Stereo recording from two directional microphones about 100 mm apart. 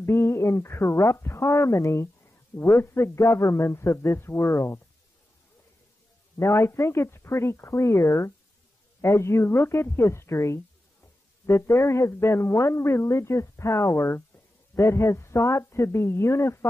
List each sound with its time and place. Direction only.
0.0 s speech: 25° left (ahead or behind)
6.3 s speech: 30° left (ahead or behind)